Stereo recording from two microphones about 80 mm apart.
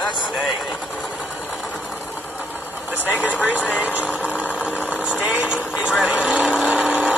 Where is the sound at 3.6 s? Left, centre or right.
Left.